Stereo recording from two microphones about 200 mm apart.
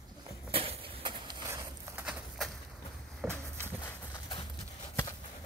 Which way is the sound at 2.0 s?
Centre (ahead or behind).